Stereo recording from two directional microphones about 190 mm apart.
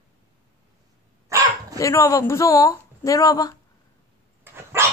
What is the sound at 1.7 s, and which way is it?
Speech, 15° left (ahead or behind).